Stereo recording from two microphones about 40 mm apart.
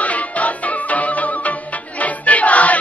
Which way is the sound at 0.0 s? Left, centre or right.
Left.